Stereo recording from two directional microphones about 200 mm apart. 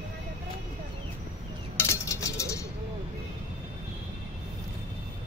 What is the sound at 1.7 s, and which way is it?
Music, 15° left (ahead or behind).